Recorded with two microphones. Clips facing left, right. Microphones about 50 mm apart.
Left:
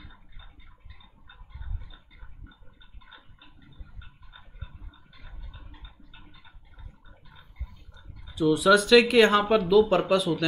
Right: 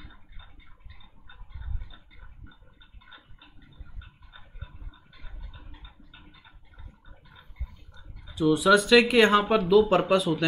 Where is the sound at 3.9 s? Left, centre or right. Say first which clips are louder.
Right 1 dB; centre.